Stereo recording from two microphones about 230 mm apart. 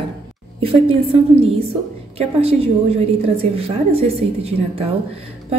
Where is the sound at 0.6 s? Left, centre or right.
Right.